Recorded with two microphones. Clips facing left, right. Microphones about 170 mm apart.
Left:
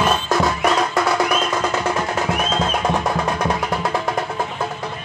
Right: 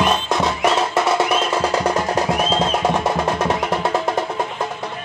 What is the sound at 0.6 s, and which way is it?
Music, 25° right (ahead or behind).